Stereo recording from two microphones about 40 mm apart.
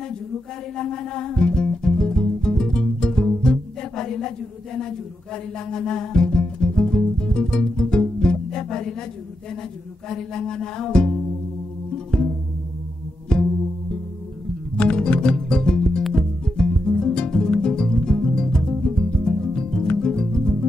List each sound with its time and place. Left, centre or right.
0.7 s music: centre
10.0 s music: centre
14.8 s music: left